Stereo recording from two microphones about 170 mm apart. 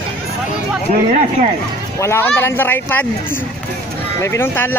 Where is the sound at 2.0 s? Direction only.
15° left (ahead or behind).